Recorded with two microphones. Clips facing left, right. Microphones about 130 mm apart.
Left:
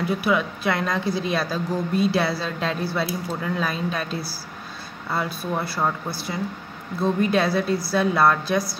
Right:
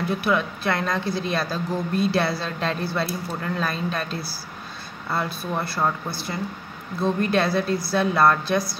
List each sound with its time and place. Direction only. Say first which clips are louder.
0.0 s speech: left 1 dB; 5° left (ahead or behind)